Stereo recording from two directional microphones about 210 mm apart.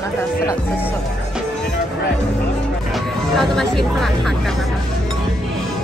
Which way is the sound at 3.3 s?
Centre (ahead or behind).